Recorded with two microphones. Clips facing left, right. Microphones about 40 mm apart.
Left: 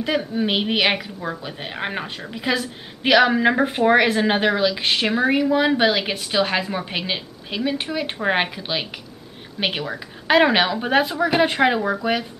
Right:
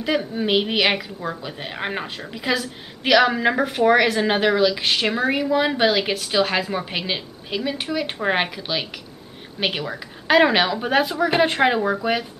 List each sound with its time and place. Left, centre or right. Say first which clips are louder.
0.0 s a woman's voice: even; centre